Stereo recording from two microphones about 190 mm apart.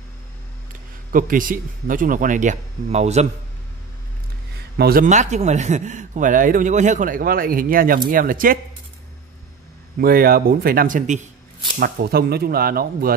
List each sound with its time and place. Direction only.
1.1 s a man's voice: 45° right (ahead or behind)
4.7 s a man's voice: 50° right (ahead or behind)
9.9 s a man's voice: 50° right (ahead or behind)
11.8 s a man's voice: 55° right (ahead or behind)